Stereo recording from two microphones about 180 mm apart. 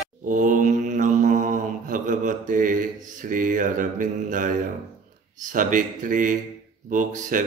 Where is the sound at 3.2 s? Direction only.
50° right (ahead or behind).